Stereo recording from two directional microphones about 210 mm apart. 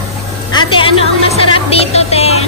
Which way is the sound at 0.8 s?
25° left (ahead or behind).